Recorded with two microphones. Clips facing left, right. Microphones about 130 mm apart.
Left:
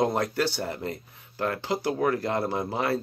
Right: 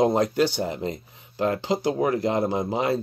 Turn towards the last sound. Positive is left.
turn(degrees=-20)  # may be behind; listen again after turning